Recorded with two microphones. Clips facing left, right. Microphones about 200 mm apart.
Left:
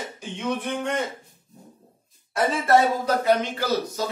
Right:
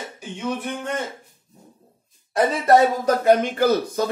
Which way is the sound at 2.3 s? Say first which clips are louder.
Right 3 dB; 40° right (ahead or behind).